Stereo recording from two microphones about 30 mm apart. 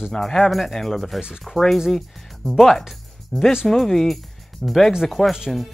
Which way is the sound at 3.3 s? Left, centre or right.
Centre.